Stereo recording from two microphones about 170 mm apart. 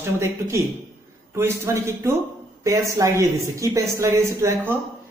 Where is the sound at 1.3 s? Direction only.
15° right (ahead or behind).